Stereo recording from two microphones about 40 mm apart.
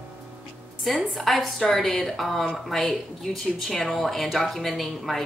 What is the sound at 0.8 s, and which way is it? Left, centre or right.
Speech, centre.